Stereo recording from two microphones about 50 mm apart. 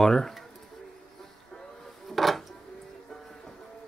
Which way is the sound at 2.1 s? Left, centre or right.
Centre.